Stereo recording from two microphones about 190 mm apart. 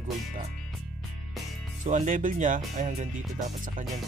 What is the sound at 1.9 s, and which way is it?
Speech, 40° right (ahead or behind).